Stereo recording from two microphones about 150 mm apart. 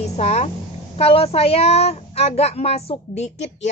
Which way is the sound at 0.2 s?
45° left (ahead or behind).